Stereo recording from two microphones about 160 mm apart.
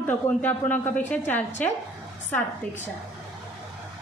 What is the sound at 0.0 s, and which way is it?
A woman's voice, 10° left (ahead or behind).